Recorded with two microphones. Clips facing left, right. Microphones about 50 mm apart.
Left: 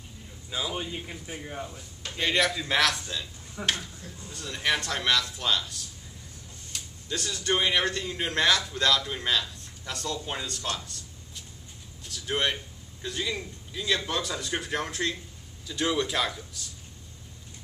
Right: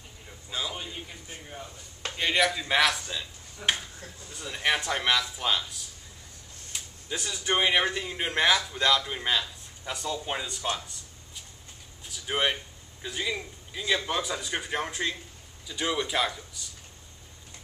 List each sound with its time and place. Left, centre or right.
0.5 s a man's voice: centre
0.7 s a man's voice: left
2.1 s a man's voice: centre